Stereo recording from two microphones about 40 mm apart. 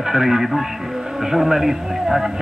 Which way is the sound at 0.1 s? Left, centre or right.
Centre.